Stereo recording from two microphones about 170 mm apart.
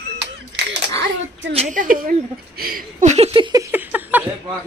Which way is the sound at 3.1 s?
35° right (ahead or behind).